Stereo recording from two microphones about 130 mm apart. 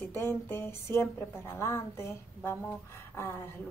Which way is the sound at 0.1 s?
20° left (ahead or behind).